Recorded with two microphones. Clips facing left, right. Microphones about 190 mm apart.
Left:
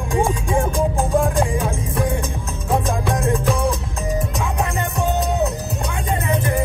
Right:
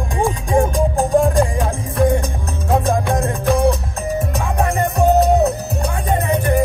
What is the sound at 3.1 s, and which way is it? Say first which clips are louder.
Music: right 2 dB; 35° right (ahead or behind).